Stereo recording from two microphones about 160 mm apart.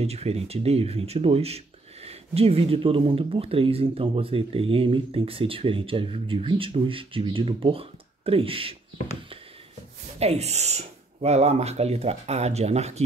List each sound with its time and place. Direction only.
0.0 s speech: 40° right (ahead or behind)
10.1 s speech: 40° right (ahead or behind)